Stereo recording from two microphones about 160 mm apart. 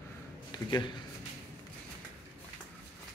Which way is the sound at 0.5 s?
25° left (ahead or behind).